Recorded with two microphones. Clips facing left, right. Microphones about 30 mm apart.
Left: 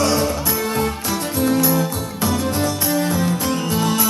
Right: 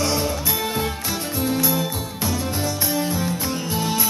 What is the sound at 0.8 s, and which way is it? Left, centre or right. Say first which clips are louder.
Music: left 4 dB; centre.